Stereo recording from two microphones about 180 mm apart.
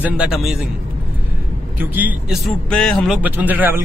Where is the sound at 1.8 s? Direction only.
10° right (ahead or behind).